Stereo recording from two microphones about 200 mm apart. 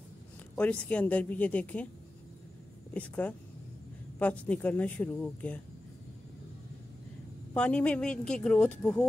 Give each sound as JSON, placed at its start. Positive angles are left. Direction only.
{"t": 0.6, "sound": "speech", "side_deg": 5}
{"t": 2.9, "sound": "speech", "side_deg": 5}
{"t": 7.5, "sound": "speech", "side_deg": 5}